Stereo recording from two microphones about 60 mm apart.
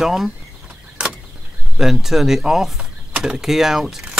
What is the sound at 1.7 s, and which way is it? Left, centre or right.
Speech, centre.